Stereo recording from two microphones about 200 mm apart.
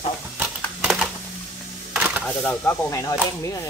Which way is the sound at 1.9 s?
5° right (ahead or behind).